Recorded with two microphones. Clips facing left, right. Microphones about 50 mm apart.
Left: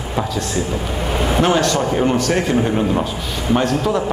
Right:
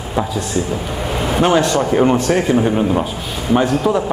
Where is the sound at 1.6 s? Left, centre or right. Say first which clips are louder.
Right 2 dB; right.